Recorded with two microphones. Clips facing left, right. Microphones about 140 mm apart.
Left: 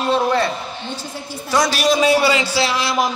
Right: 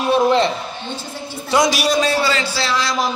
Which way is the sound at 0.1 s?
20° right (ahead or behind).